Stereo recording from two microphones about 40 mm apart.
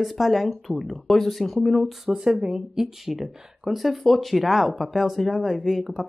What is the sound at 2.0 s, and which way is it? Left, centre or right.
A woman's voice, centre.